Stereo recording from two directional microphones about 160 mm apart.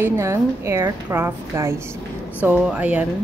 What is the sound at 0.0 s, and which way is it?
A woman's voice, 15° right (ahead or behind).